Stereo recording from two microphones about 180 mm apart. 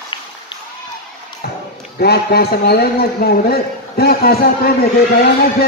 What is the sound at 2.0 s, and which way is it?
A man's voice, 60° left (ahead or behind).